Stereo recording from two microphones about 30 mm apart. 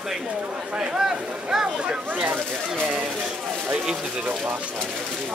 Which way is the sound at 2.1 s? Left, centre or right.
Right.